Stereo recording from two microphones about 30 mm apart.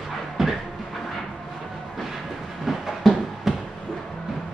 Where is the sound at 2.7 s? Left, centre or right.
Centre.